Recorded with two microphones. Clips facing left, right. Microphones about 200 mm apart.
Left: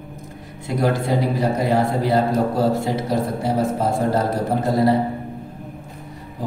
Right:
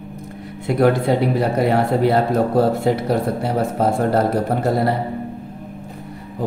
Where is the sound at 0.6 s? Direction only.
60° right (ahead or behind).